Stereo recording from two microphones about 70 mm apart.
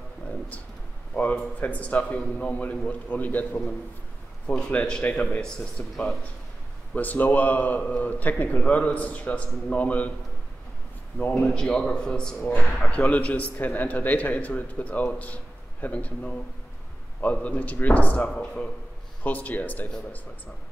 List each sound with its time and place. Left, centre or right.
1.1 s a man's voice: left
7.0 s a man's voice: left
11.1 s a man's voice: left
11.4 s speech: centre
13.0 s a man's voice: left